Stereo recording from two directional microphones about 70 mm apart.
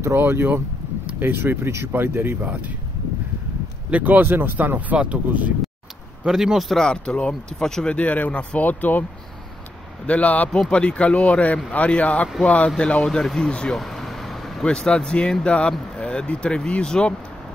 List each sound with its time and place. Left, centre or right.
0.0 s speech: right
3.9 s speech: right
6.2 s a man's voice: centre
6.7 s speech: centre
10.0 s speech: centre
13.7 s vehicle: centre
14.6 s speech: centre